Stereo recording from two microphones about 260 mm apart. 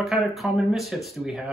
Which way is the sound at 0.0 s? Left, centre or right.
Centre.